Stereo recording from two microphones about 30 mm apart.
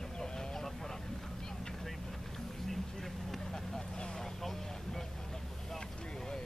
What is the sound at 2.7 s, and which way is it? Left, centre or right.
Vehicle, centre.